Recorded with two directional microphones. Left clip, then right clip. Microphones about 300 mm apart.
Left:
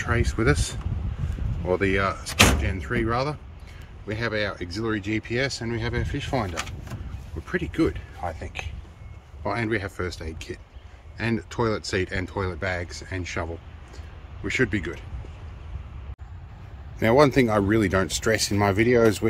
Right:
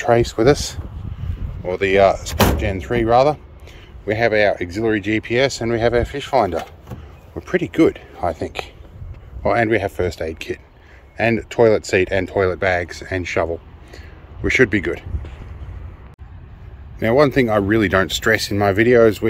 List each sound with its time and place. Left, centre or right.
0.1 s speech: centre
1.7 s a man's voice: centre
13.9 s a sound: centre
17.0 s speech: centre